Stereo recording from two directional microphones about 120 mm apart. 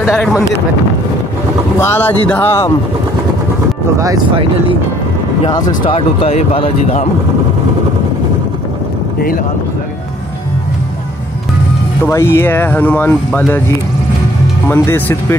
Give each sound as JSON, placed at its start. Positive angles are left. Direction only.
{"t": 0.0, "sound": "speech", "side_deg": -5}
{"t": 1.8, "sound": "speech", "side_deg": 20}
{"t": 5.9, "sound": "speech", "side_deg": 50}
{"t": 12.0, "sound": "speech", "side_deg": 25}
{"t": 14.7, "sound": "speech", "side_deg": 20}